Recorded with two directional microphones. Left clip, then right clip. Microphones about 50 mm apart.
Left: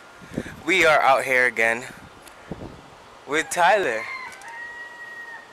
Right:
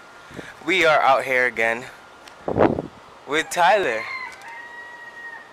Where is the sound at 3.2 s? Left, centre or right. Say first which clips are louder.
Right 1 dB; centre.